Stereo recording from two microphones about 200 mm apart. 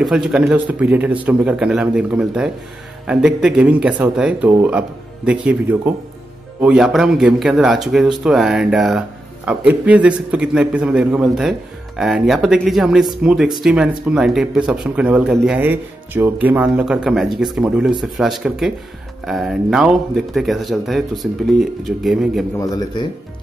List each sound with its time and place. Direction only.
0.0 s speech: 5° right (ahead or behind)
22.6 s a man's voice: 20° left (ahead or behind)